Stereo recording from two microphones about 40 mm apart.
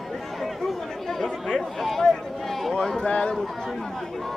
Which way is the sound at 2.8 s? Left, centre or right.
Centre.